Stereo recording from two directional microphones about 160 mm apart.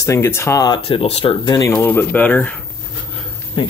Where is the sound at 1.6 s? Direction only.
20° left (ahead or behind).